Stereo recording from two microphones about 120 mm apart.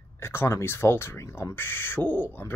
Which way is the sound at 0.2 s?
20° left (ahead or behind).